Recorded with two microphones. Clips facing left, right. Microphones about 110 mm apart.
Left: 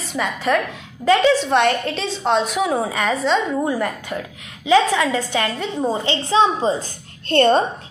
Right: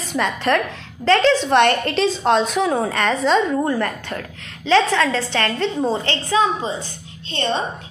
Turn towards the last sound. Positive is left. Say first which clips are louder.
# left 8 dB
turn(degrees=50)  # may be behind; listen again after turning